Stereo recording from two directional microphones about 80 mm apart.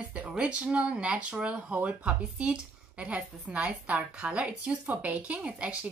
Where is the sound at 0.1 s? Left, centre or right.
Centre.